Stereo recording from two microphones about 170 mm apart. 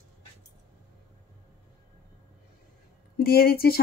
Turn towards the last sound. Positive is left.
turn(degrees=65)  # may be behind; listen again after turning